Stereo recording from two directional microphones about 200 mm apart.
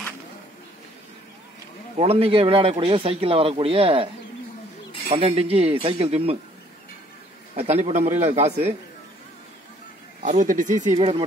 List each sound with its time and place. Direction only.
2.0 s speech: 30° right (ahead or behind)
5.1 s speech: 30° right (ahead or behind)
7.5 s a man's voice: 30° right (ahead or behind)
10.2 s a man's voice: 40° right (ahead or behind)
11.0 s speech: 30° right (ahead or behind)